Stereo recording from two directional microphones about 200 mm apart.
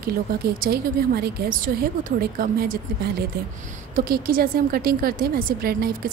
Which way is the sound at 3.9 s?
45° right (ahead or behind).